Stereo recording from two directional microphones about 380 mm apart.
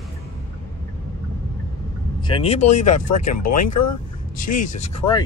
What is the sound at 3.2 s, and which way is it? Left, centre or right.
Speech, left.